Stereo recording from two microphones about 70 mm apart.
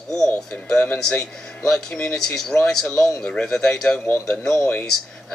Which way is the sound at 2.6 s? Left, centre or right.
Centre.